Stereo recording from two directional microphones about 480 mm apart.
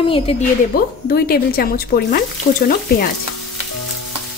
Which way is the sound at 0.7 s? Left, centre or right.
Centre.